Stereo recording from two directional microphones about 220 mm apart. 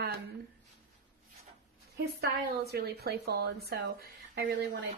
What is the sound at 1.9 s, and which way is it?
A woman's voice, 45° right (ahead or behind).